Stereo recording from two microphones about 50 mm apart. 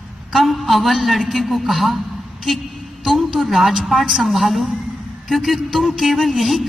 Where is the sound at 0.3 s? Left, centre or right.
Centre.